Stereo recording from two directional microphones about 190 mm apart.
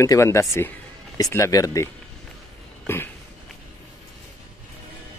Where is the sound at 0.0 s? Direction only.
15° left (ahead or behind).